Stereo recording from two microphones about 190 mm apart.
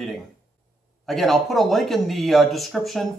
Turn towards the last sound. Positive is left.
turn(degrees=0)  # may be behind; listen again after turning